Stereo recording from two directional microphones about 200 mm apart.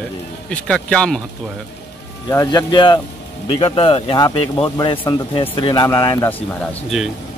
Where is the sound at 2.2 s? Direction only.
20° left (ahead or behind).